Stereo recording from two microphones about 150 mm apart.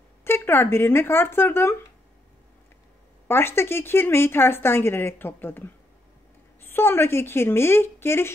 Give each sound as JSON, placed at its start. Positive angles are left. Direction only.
{"t": 0.2, "sound": "speech", "side_deg": 15}
{"t": 3.3, "sound": "speech", "side_deg": 15}